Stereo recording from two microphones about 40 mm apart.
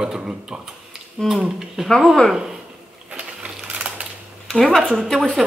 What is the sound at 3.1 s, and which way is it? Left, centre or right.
Sewing machine, right.